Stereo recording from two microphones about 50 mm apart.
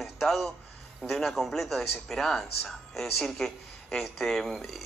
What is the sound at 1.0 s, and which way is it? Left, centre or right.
Speech, centre.